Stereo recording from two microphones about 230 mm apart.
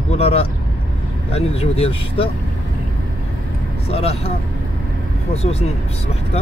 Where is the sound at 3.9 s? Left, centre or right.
Left.